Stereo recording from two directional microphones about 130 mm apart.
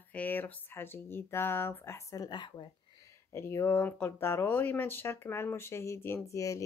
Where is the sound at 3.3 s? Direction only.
20° left (ahead or behind).